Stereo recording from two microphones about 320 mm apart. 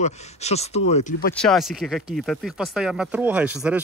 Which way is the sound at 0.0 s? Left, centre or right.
Centre.